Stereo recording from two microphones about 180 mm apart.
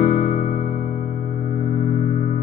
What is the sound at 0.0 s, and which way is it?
Music, 45° left (ahead or behind).